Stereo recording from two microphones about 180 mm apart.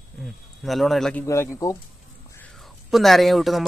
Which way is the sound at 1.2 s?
15° left (ahead or behind).